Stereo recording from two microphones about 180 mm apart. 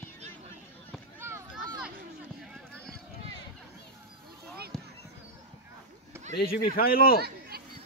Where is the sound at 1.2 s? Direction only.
15° right (ahead or behind).